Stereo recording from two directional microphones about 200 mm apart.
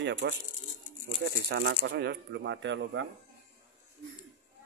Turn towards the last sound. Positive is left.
turn(degrees=-65)  # may be behind; listen again after turning